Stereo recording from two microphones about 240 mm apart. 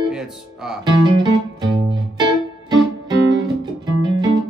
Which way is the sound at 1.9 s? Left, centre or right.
Centre.